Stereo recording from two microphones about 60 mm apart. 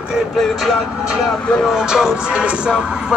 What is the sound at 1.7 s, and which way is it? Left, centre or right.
Music, centre.